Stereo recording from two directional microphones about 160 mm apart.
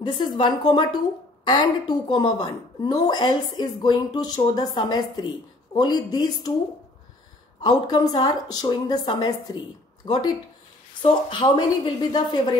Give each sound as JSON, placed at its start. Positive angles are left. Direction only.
{"t": 0.4, "sound": "a woman's voice", "side_deg": 30}
{"t": 7.6, "sound": "a woman's voice", "side_deg": 25}